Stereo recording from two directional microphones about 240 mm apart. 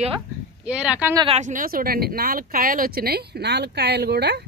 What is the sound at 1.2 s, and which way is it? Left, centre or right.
Speech, right.